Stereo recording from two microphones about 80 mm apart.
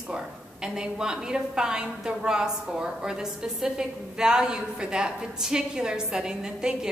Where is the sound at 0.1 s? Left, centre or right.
Centre.